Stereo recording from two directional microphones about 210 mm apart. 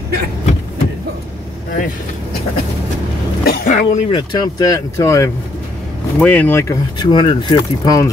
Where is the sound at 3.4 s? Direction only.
45° left (ahead or behind).